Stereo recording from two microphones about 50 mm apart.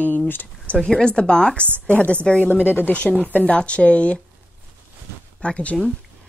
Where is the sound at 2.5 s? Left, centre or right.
Right.